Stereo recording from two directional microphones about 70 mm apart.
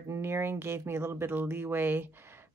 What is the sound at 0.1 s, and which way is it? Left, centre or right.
Speech, right.